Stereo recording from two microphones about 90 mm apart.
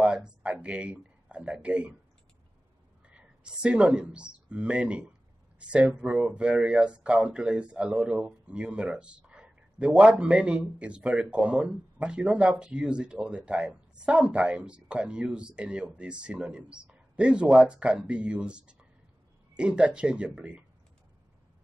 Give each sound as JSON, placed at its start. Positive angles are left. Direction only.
{"t": 0.0, "sound": "speech", "side_deg": -10}
{"t": 3.1, "sound": "speech", "side_deg": -10}